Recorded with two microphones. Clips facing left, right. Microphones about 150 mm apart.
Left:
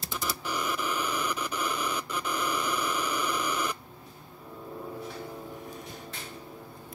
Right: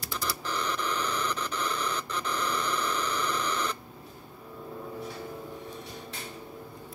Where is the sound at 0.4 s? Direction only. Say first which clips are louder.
Left 1 dB; 10° left (ahead or behind).